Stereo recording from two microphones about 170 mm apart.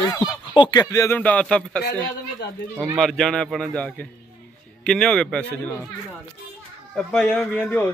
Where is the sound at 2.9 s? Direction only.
Centre (ahead or behind).